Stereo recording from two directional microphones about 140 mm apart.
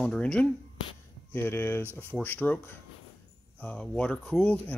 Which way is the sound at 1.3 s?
15° left (ahead or behind).